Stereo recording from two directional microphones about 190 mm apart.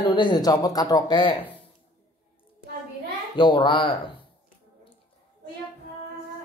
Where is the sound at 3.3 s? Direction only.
25° left (ahead or behind).